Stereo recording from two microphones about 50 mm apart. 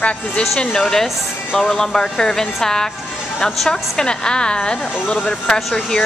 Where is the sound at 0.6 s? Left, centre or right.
Centre.